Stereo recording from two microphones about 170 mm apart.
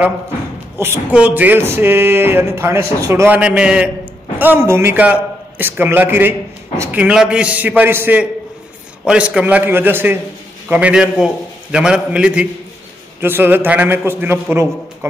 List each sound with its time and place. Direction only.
0.7 s a man's voice: 15° right (ahead or behind)